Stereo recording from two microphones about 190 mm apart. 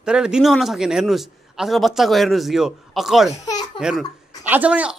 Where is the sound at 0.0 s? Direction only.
5° right (ahead or behind).